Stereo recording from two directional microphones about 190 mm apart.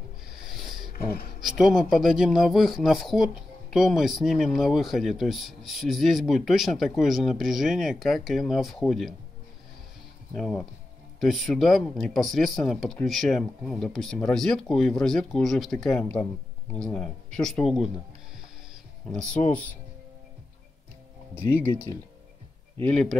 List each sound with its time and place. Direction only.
0.3 s a sound: centre (ahead or behind)
0.9 s speech: 50° left (ahead or behind)
1.4 s speech: centre (ahead or behind)
10.3 s speech: centre (ahead or behind)
22.8 s speech: 5° left (ahead or behind)